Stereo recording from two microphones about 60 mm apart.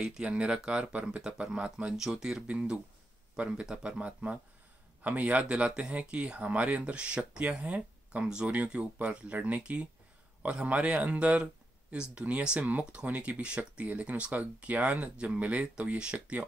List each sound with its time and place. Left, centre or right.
0.0 s speech: centre
2.0 s speech: centre